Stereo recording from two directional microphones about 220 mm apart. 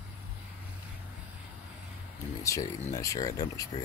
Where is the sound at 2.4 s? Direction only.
15° left (ahead or behind).